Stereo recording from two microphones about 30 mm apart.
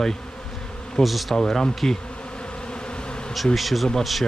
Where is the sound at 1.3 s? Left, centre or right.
Centre.